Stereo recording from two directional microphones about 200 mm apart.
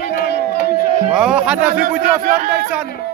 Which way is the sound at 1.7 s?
45° right (ahead or behind).